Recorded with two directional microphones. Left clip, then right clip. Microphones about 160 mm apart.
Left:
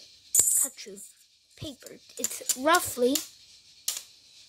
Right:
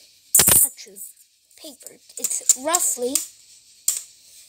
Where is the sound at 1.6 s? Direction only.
20° left (ahead or behind).